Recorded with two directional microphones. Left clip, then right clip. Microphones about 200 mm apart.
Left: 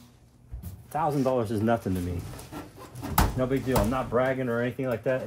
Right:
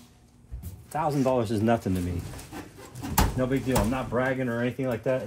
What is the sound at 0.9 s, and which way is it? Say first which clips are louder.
Speech: even; 15° right (ahead or behind).